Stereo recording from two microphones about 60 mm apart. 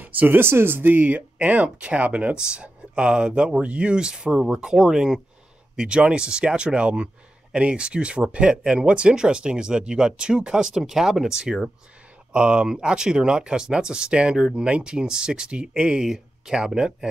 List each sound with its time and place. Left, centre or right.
0.0 s speech: right; by 17.1 s centre